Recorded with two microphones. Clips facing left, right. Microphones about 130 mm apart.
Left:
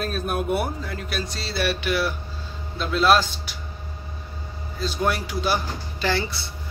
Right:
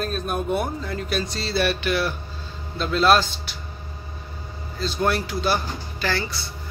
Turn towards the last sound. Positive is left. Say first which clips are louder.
# left 2 dB
turn(degrees=20)  # may be behind; listen again after turning